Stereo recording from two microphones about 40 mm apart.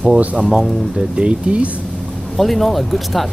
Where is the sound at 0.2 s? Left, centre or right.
Right.